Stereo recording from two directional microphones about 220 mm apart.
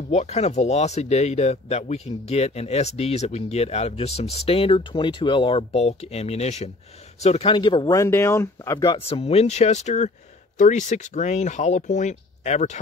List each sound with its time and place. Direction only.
0.1 s speech: 30° left (ahead or behind)